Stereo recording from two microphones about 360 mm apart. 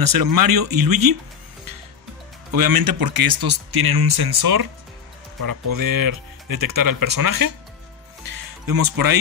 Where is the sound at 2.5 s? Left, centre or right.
Right.